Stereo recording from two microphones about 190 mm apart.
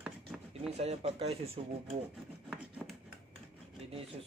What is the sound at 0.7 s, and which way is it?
Speech, 30° right (ahead or behind).